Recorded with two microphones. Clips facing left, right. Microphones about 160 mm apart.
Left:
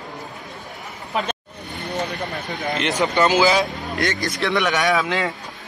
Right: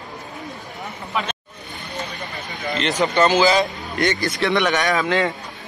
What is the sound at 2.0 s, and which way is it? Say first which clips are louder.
Vehicle: left 4 dB; 55° left (ahead or behind).